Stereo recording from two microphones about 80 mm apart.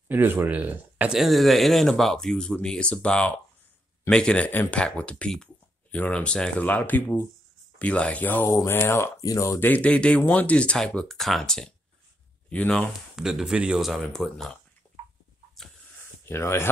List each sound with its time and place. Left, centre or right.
0.1 s speech: right
1.1 s speech: centre; by 8.5 s left
8.5 s speech: left
9.1 s speech: left
9.6 s speech: centre
13.1 s speech: centre
15.6 s a sound: centre
16.3 s speech: left